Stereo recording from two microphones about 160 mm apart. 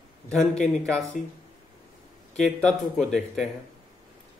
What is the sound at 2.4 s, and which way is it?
A man's voice, centre (ahead or behind).